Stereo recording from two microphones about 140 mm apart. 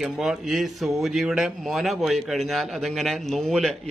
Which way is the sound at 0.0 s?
5° right (ahead or behind).